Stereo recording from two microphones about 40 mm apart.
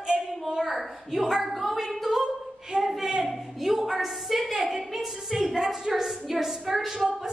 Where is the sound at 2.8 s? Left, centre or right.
Centre.